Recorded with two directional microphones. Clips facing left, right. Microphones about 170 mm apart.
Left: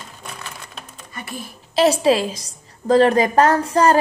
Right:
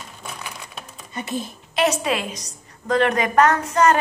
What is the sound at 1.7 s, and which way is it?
A woman's voice, 30° left (ahead or behind).